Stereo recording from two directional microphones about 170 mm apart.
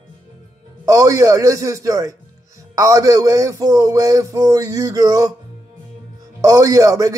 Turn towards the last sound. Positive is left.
turn(degrees=-20)  # may be behind; listen again after turning